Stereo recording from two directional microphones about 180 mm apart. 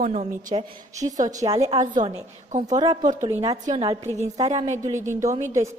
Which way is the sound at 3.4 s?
20° right (ahead or behind).